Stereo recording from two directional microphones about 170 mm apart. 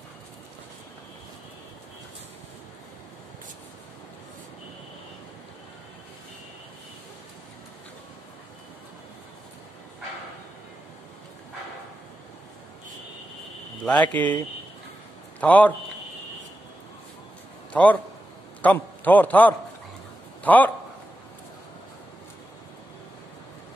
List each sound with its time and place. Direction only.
13.8 s speech: 10° left (ahead or behind)
15.4 s speech: 10° left (ahead or behind)
17.7 s a man's voice: 5° left (ahead or behind)